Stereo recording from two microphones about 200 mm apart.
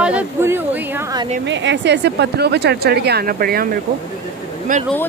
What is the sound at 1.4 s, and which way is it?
Speech, 65° right (ahead or behind).